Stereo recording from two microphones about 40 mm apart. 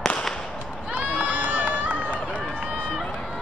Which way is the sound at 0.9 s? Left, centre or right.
Right.